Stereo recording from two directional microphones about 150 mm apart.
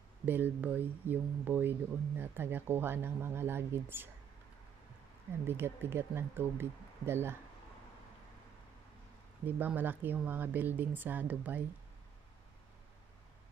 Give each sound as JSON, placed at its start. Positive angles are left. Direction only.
{"t": 0.2, "sound": "speech", "side_deg": -15}
{"t": 5.5, "sound": "speech", "side_deg": -15}
{"t": 9.4, "sound": "speech", "side_deg": -10}